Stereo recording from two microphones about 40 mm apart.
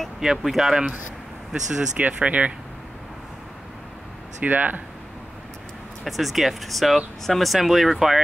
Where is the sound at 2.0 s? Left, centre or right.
Right.